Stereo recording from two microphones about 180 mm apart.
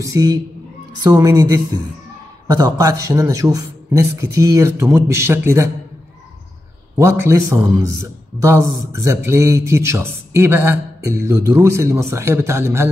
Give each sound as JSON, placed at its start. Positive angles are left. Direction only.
{"t": 0.0, "sound": "a woman's voice", "side_deg": -20}
{"t": 7.0, "sound": "a man's voice", "side_deg": -15}